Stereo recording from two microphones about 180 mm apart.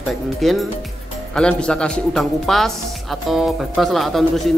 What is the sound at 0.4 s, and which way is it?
Speech, centre (ahead or behind).